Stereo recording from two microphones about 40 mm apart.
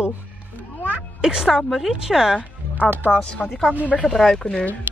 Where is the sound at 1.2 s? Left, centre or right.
Centre.